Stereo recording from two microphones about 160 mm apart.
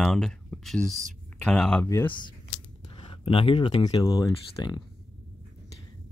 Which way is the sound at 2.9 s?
30° left (ahead or behind).